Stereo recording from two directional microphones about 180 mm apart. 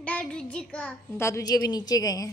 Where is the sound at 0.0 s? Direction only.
5° left (ahead or behind).